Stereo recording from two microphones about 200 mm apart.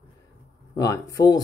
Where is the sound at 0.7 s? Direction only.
15° left (ahead or behind).